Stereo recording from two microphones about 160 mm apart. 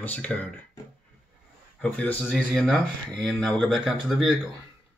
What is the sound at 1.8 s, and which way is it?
Speech, 10° left (ahead or behind).